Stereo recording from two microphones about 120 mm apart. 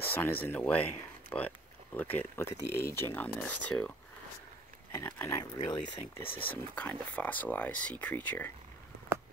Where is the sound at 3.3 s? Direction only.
5° left (ahead or behind).